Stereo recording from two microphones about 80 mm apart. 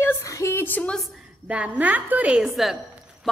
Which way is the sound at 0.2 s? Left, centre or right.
Left.